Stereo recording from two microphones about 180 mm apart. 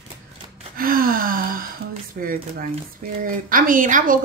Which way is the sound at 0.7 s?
55° right (ahead or behind).